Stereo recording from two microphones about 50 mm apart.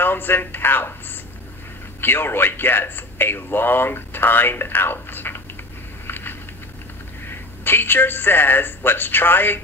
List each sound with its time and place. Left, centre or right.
0.0 s speech: left
6.0 s a sound: left
7.2 s a woman's voice: left